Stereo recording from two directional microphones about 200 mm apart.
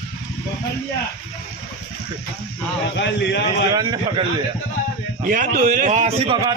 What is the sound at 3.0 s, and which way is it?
Speech, 60° left (ahead or behind).